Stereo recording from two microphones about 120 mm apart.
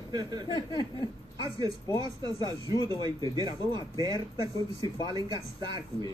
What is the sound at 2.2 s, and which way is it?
Speech, 35° right (ahead or behind).